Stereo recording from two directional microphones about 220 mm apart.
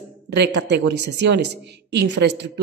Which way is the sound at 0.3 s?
50° right (ahead or behind).